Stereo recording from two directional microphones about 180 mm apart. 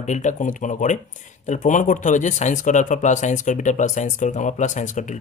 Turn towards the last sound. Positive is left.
turn(degrees=45)  # may be behind; listen again after turning